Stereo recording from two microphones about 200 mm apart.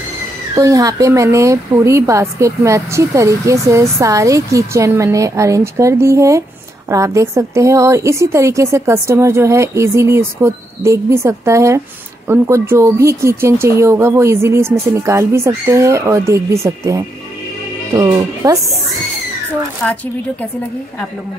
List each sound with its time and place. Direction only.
0.6 s speech: 15° right (ahead or behind)
19.8 s speech: 5° left (ahead or behind)